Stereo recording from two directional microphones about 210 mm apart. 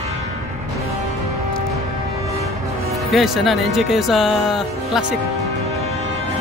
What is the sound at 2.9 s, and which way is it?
Speech, centre (ahead or behind).